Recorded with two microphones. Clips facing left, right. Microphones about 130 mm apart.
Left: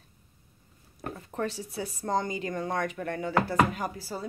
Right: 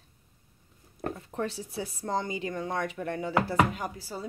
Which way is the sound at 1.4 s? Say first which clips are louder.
Left 1 dB; 30° right (ahead or behind).